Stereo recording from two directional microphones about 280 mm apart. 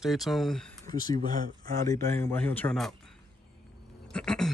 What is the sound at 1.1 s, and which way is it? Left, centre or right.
Speech, right.